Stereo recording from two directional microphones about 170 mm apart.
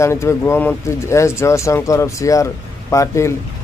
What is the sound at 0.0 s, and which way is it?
A man's voice, 15° left (ahead or behind).